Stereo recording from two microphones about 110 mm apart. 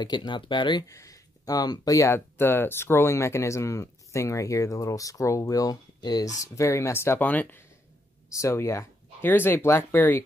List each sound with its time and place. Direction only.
0.0 s speech: 40° left (ahead or behind)
0.8 s speech: 30° left (ahead or behind)
8.4 s speech: 25° left (ahead or behind)